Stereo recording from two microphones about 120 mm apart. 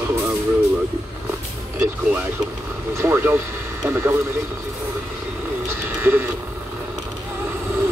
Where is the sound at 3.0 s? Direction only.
20° right (ahead or behind).